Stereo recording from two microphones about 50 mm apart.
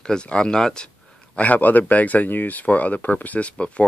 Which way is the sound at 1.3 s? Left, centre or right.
Left.